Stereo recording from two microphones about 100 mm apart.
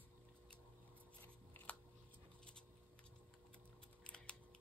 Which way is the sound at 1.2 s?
15° left (ahead or behind).